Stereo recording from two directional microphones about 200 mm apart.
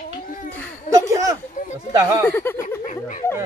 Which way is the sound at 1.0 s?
15° right (ahead or behind).